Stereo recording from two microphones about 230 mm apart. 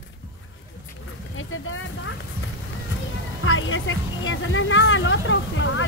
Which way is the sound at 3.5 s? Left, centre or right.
Left.